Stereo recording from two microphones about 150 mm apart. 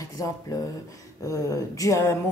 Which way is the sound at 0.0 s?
20° left (ahead or behind).